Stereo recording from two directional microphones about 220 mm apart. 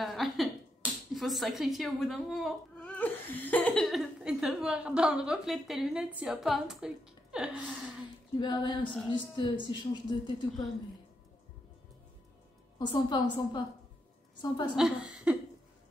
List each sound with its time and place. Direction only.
0.0 s a sound: centre (ahead or behind)
1.1 s speech: centre (ahead or behind)
8.4 s a woman's voice: 20° left (ahead or behind)
12.7 s a woman's voice: 20° left (ahead or behind)
14.8 s speech: 5° right (ahead or behind)